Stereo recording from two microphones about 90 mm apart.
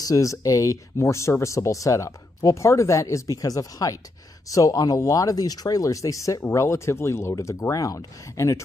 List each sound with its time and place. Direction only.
0.0 s speech: 40° left (ahead or behind)